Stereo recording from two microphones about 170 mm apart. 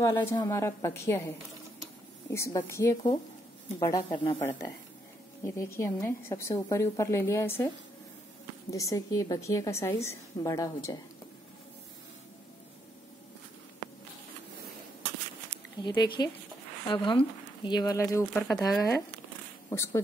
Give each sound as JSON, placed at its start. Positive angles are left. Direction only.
{"t": 0.0, "sound": "a woman's voice", "side_deg": 15}
{"t": 4.4, "sound": "a woman's voice", "side_deg": 15}
{"t": 15.8, "sound": "a woman's voice", "side_deg": 25}
{"t": 19.7, "sound": "a woman's voice", "side_deg": 15}